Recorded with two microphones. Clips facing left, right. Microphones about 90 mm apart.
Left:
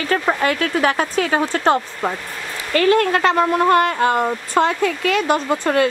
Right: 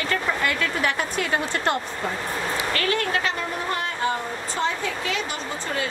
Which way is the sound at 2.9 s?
55° left (ahead or behind).